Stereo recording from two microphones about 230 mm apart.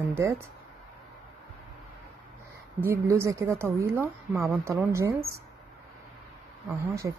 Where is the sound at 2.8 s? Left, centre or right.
Centre.